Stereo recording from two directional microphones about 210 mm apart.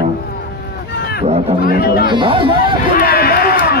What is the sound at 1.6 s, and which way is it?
Speech, 45° left (ahead or behind).